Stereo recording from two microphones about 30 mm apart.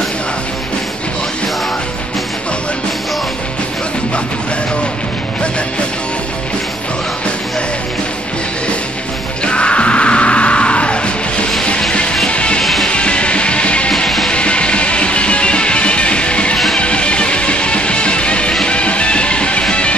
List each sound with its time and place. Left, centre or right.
9.4 s music: left
14.0 s music: centre
14.3 s music: left